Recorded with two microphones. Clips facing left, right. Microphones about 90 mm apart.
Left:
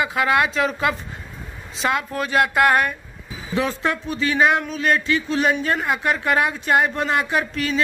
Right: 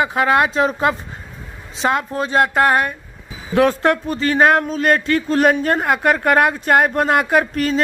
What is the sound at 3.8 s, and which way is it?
A woman's voice, 45° right (ahead or behind).